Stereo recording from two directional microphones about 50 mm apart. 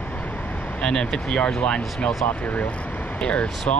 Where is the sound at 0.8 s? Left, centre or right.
Centre.